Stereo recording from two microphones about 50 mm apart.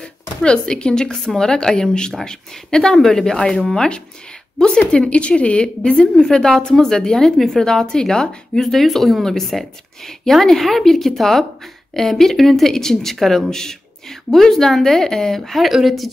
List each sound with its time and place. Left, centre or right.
0.0 s a woman's voice: centre